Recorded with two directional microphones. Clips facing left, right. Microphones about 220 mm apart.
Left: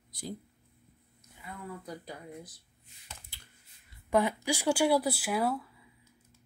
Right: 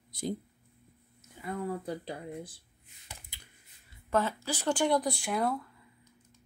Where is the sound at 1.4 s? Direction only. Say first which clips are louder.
Right 8 dB; 35° right (ahead or behind).